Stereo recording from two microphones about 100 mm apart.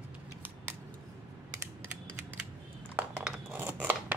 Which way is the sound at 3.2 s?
20° right (ahead or behind).